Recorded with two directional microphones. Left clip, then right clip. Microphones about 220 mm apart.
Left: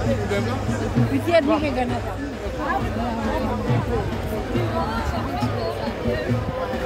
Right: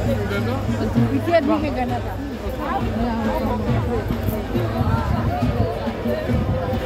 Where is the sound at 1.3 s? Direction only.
25° left (ahead or behind).